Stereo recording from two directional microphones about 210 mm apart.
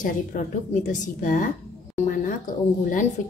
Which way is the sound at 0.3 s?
40° left (ahead or behind).